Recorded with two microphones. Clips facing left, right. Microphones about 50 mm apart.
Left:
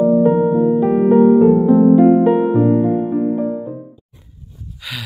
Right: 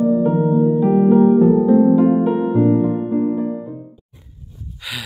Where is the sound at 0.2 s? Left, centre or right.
Left.